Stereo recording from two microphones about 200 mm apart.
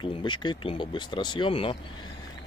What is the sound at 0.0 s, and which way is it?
A man's voice, 25° left (ahead or behind).